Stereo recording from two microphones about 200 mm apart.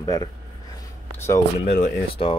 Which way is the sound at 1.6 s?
35° left (ahead or behind).